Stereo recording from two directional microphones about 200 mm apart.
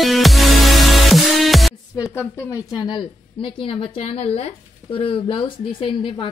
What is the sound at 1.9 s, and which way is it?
A woman's voice, 15° left (ahead or behind).